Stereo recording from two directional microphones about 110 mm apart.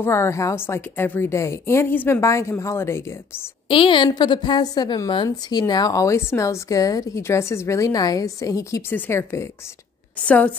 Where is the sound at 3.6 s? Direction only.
55° left (ahead or behind); by 8.8 s 30° left (ahead or behind).